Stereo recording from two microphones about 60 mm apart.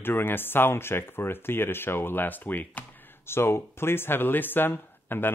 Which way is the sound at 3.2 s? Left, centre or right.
Left.